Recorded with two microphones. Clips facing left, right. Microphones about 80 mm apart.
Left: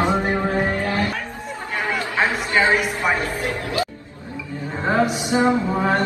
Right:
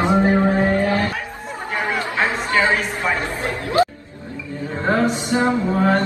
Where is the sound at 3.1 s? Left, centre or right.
Right.